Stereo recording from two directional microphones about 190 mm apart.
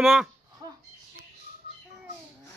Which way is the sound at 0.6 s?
20° right (ahead or behind).